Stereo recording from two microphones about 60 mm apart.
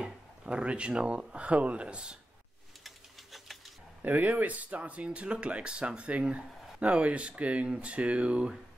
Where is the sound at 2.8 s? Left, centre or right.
Centre.